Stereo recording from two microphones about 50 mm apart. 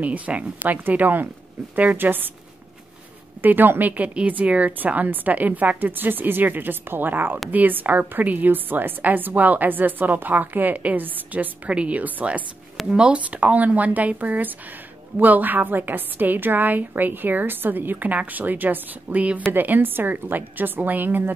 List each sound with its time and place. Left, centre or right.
0.0 s a woman's voice: right
3.4 s a woman's voice: right